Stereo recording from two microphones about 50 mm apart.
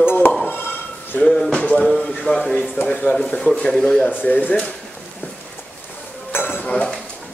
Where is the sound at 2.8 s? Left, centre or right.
Left.